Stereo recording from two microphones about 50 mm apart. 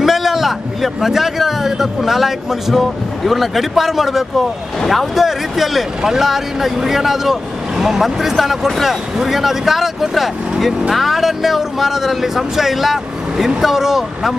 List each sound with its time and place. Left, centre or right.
0.0 s a man's voice: centre